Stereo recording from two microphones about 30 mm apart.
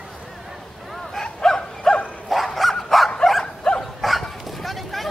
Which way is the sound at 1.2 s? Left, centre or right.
Left.